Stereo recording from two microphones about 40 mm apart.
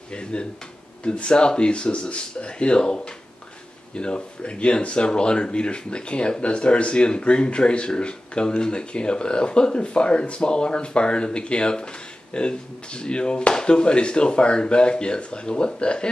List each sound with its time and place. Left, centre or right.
0.1 s speech: left